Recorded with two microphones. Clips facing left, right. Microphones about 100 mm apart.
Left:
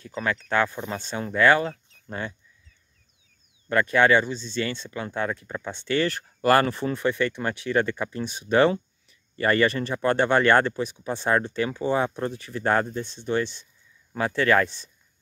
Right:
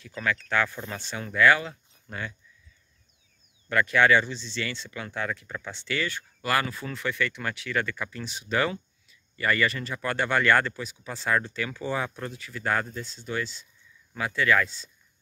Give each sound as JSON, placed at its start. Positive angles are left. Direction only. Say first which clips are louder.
{"t": 0.1, "sound": "speech", "louder": "left 2 dB", "side_deg": 30}
{"t": 3.9, "sound": "speech", "louder": "left 2 dB", "side_deg": 20}
{"t": 4.3, "sound": "speech", "louder": "left 5 dB", "side_deg": 40}
{"t": 5.7, "sound": "speech", "louder": "left 7 dB", "side_deg": 40}
{"t": 6.9, "sound": "speech", "louder": "left 6 dB", "side_deg": 20}